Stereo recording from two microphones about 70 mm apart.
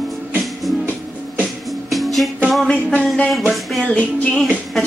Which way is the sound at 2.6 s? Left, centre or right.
Centre.